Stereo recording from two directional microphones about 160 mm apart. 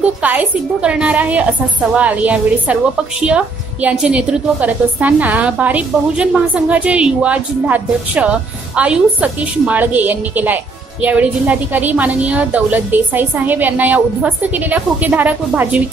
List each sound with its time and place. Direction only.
0.2 s a woman's voice: 10° right (ahead or behind)